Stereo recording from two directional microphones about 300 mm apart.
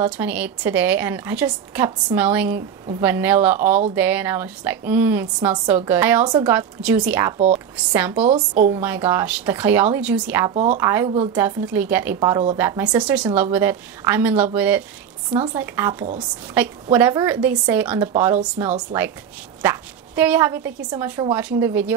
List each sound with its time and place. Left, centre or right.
0.0 s a woman's voice: centre
7.3 s speech: right
7.7 s a woman's voice: centre
8.3 s speech: right
8.7 s a woman's voice: centre
10.5 s speech: right
10.8 s a woman's voice: centre